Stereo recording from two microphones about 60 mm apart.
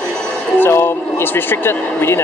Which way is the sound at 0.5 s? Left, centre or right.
Left.